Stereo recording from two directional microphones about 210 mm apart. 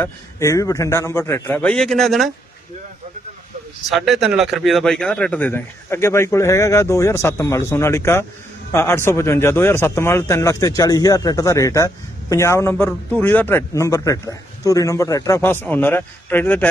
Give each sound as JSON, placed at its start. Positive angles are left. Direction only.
{"t": 0.0, "sound": "a man's voice", "side_deg": 15}
{"t": 3.9, "sound": "a man's voice", "side_deg": 0}